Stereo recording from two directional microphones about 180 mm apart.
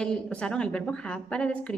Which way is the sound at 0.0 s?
5° left (ahead or behind).